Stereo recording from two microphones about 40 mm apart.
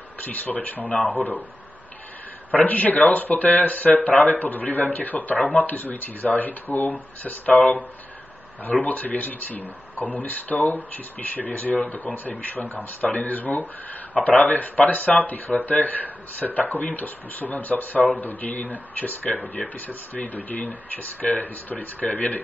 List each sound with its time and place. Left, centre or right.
0.2 s speech: left
2.5 s speech: left
8.6 s speech: left